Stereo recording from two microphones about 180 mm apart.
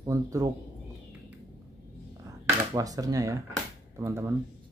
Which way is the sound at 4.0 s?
15° right (ahead or behind).